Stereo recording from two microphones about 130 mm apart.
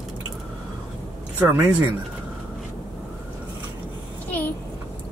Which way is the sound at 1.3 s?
15° right (ahead or behind).